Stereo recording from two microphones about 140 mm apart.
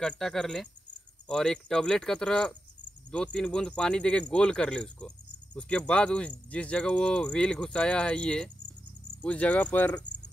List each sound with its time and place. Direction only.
0.0 s speech: centre (ahead or behind)